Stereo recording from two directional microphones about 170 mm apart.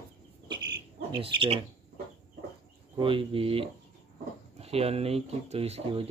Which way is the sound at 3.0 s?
30° right (ahead or behind).